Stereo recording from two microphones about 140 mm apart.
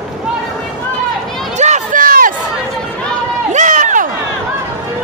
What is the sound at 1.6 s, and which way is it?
Run, 60° right (ahead or behind).